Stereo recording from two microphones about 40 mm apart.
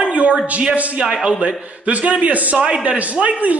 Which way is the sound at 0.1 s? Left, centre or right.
Right.